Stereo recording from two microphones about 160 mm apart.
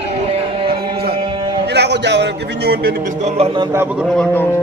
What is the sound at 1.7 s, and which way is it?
A man's voice, 90° right.